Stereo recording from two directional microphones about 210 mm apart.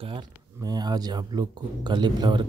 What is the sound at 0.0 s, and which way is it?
Speech, 20° right (ahead or behind).